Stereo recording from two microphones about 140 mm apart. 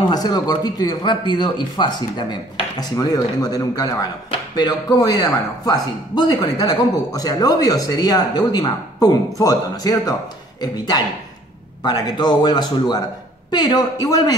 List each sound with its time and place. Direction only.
0.0 s speech: 30° left (ahead or behind)